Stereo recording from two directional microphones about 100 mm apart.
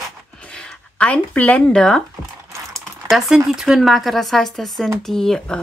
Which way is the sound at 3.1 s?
5° right (ahead or behind).